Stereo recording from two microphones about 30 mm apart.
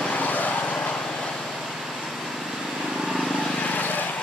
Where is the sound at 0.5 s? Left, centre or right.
Left.